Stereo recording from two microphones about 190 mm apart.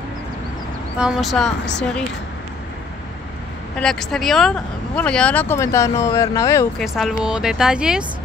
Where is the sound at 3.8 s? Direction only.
Centre (ahead or behind).